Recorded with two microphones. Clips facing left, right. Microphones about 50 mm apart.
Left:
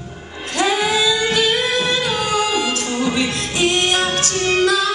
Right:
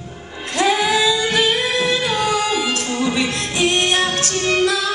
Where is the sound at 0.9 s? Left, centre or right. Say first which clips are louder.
Even; right.